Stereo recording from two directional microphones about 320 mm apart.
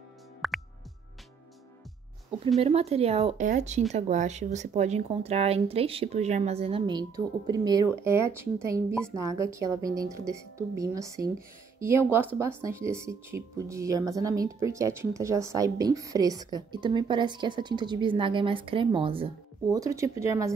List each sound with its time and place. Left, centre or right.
0.4 s music: centre
2.6 s speech: centre